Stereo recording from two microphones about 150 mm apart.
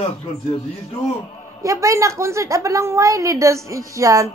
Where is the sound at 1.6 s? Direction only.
20° right (ahead or behind).